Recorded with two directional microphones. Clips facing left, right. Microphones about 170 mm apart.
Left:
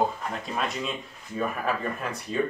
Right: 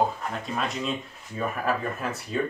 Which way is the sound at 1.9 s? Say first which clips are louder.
Right 1 dB; centre (ahead or behind).